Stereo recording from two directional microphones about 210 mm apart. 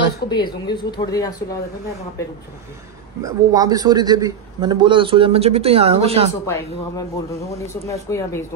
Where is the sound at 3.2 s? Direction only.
15° right (ahead or behind).